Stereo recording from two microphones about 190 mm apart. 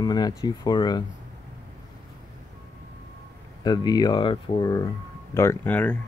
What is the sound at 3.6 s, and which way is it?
Speech, 20° left (ahead or behind).